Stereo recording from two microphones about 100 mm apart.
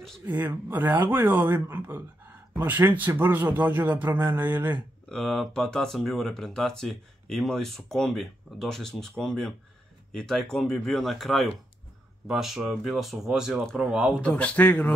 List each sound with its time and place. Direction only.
0.2 s speech: 20° right (ahead or behind)
5.1 s speech: 5° left (ahead or behind)
14.2 s speech: 15° left (ahead or behind)